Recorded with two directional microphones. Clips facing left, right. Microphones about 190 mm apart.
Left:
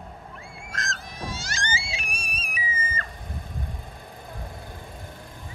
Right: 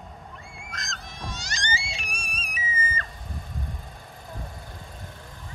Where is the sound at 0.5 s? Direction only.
Centre (ahead or behind).